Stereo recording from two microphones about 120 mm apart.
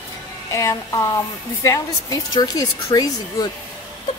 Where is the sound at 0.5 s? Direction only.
25° left (ahead or behind).